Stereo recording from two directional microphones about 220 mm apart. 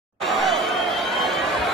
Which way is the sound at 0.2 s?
Centre (ahead or behind).